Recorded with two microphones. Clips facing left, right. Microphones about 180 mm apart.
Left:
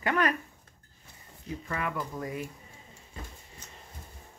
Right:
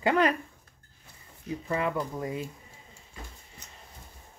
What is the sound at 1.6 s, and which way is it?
Speech, 25° right (ahead or behind).